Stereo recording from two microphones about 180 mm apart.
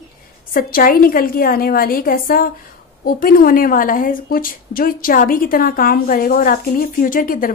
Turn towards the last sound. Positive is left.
turn(degrees=50)  # may be behind; listen again after turning